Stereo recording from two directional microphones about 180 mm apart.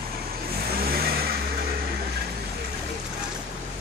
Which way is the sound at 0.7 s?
55° right (ahead or behind).